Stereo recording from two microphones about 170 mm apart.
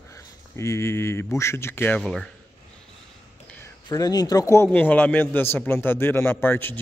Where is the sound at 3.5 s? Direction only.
15° left (ahead or behind).